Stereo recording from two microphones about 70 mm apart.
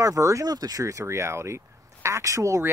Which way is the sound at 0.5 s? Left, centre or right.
Right.